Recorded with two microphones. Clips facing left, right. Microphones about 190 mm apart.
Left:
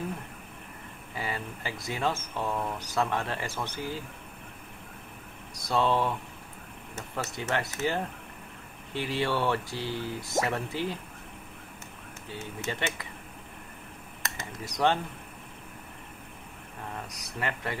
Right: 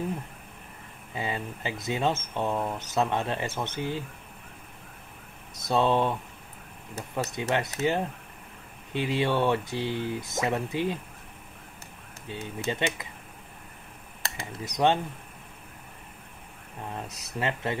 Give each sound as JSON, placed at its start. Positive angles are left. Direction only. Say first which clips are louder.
{"t": 1.1, "sound": "speech", "louder": "right 3 dB", "side_deg": -20}
{"t": 5.5, "sound": "speech", "louder": "right 2 dB", "side_deg": -20}
{"t": 7.2, "sound": "speech", "louder": "right 3 dB", "side_deg": -15}
{"t": 12.3, "sound": "speech", "louder": "right 4 dB", "side_deg": -20}
{"t": 14.2, "sound": "a sound", "louder": "right 1 dB", "side_deg": -30}
{"t": 14.6, "sound": "speech", "louder": "right 2 dB", "side_deg": -20}
{"t": 16.9, "sound": "speech", "louder": "right 4 dB", "side_deg": -25}